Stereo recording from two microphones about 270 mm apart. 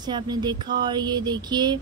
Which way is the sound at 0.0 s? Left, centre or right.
Centre.